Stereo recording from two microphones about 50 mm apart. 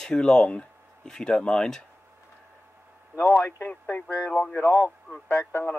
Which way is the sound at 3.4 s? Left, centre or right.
Left.